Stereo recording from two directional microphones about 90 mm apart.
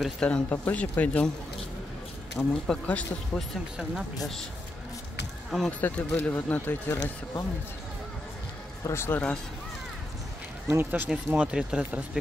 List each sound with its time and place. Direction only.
0.2 s speech: 10° left (ahead or behind)
2.3 s speech: 10° left (ahead or behind)
3.3 s speech: centre (ahead or behind)
5.7 s speech: 20° left (ahead or behind)
8.8 s speech: 30° left (ahead or behind)
10.7 s speech: 20° right (ahead or behind)